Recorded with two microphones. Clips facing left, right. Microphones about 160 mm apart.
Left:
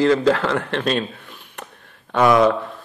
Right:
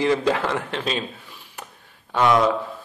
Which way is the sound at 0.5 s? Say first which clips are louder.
Left 5 dB; 60° left (ahead or behind).